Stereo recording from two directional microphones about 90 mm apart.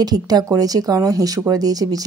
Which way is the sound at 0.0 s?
45° right (ahead or behind).